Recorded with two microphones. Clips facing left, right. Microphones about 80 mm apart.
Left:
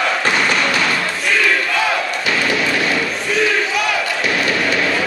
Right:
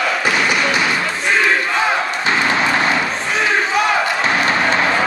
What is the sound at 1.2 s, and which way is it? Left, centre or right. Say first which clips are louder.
Battle cry: right 1 dB; right.